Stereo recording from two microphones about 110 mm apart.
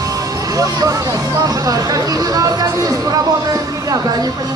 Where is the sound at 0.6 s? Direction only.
30° right (ahead or behind).